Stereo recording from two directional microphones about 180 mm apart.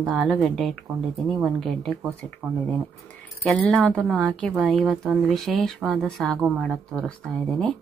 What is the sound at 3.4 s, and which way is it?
Speech, 5° left (ahead or behind).